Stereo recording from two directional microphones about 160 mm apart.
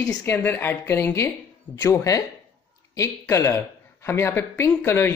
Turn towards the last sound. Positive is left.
turn(degrees=15)  # may be behind; listen again after turning